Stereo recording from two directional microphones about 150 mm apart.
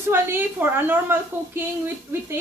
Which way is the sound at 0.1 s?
15° right (ahead or behind).